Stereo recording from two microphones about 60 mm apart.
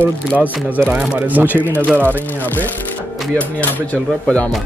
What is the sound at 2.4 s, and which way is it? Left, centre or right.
Speech, left.